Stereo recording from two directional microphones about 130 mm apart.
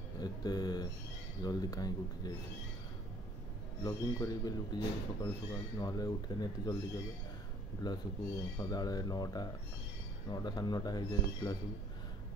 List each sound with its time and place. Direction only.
0.2 s a sound: 30° left (ahead or behind)
1.4 s speech: 30° left (ahead or behind)
3.8 s speech: 30° left (ahead or behind)
7.8 s speech: 35° left (ahead or behind)